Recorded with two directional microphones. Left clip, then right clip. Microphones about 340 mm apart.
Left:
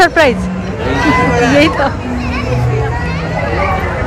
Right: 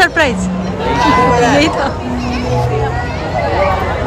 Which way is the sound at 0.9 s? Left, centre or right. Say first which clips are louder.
Right 1 dB; right.